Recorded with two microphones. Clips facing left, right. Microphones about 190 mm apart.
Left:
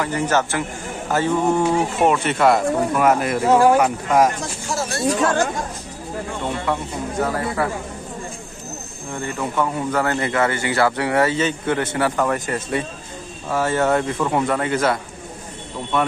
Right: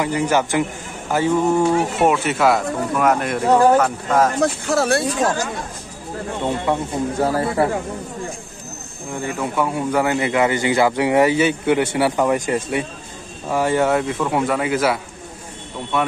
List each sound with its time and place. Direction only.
0.0 s a man's voice: 10° right (ahead or behind)
1.8 s speech: 5° right (ahead or behind); by 4.3 s 10° left (ahead or behind)
4.4 s speech: 60° right (ahead or behind)
5.0 s speech: 55° left (ahead or behind)
6.6 s speech: 25° right (ahead or behind)
9.4 s a man's voice: 10° right (ahead or behind)